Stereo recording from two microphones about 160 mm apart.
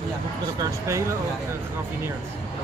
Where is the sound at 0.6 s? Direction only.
20° right (ahead or behind).